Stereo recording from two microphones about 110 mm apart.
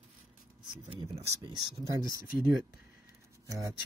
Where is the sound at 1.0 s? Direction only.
35° right (ahead or behind).